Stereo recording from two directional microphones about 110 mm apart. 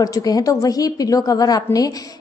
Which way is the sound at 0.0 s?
35° left (ahead or behind).